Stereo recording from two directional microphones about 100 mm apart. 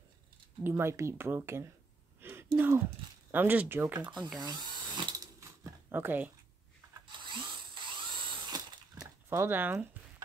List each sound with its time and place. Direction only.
0.7 s speech: 25° right (ahead or behind)
4.4 s drill: 45° right (ahead or behind)
5.4 s a sound: 30° right (ahead or behind)
5.9 s speech: 20° right (ahead or behind)
7.1 s drill: 55° right (ahead or behind)
9.3 s speech: 25° right (ahead or behind)